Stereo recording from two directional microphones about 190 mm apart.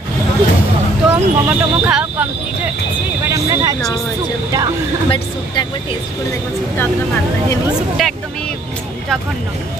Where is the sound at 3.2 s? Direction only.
15° right (ahead or behind).